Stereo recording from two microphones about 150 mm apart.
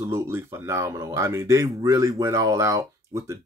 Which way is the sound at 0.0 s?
15° right (ahead or behind).